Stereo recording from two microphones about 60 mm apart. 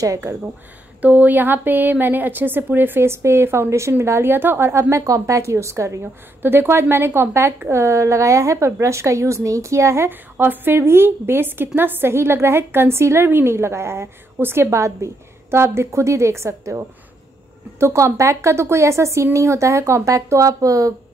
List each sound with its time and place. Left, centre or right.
1.0 s a woman's voice: right
6.4 s a woman's voice: right
10.0 s a woman's voice: right